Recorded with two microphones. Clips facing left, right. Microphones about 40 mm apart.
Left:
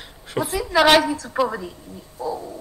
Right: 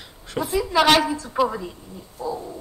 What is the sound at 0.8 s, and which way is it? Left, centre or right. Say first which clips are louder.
Speech: left 2 dB; centre.